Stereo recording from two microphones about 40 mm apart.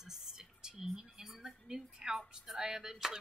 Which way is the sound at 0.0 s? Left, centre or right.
Centre.